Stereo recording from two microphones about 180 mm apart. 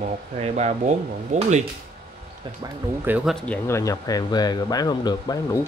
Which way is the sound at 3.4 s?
10° left (ahead or behind).